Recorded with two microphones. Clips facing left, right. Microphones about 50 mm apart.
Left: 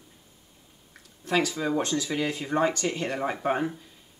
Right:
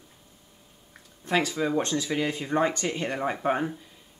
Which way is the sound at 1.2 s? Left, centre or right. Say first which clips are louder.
Even; centre.